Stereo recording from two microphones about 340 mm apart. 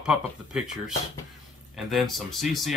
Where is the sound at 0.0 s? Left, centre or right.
Centre.